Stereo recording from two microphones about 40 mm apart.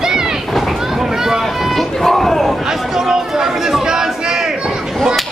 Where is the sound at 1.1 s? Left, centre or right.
Centre.